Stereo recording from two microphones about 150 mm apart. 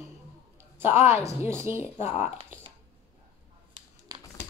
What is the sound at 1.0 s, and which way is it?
Speech, 15° right (ahead or behind).